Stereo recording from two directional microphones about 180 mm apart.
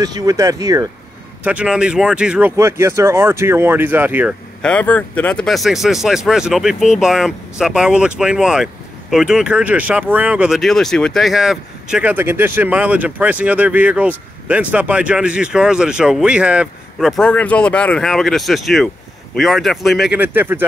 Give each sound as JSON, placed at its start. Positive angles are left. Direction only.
{"t": 0.0, "sound": "speech", "side_deg": -20}
{"t": 1.4, "sound": "speech", "side_deg": -5}
{"t": 2.5, "sound": "speech", "side_deg": -15}
{"t": 4.6, "sound": "speech", "side_deg": 5}
{"t": 17.2, "sound": "speech", "side_deg": 5}